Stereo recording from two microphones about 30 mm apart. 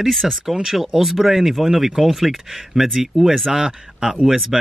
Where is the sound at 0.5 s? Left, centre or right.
Right.